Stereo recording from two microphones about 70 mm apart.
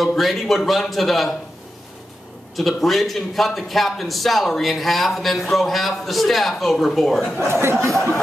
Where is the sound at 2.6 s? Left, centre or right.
Centre.